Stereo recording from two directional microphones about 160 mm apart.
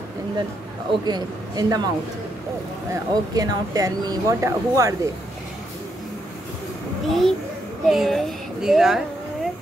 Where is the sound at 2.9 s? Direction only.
25° right (ahead or behind).